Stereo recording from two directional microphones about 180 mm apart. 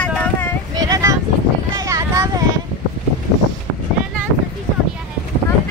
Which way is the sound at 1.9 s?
20° right (ahead or behind).